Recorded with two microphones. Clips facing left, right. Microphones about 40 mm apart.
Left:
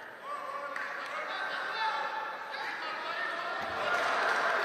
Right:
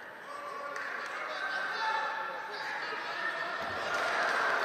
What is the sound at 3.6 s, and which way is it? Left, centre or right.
Crowd, left.